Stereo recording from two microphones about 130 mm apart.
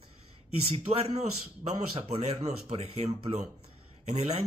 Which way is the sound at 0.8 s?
60° right (ahead or behind).